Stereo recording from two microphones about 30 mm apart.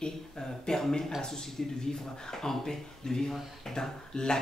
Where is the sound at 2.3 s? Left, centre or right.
Centre.